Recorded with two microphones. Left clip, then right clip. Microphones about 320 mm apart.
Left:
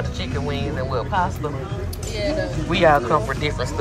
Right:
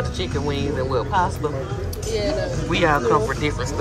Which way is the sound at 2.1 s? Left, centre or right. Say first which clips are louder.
Right 1 dB; right.